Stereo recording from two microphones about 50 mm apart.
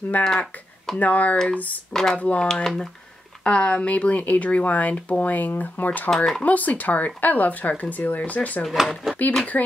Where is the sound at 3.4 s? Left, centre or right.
Left.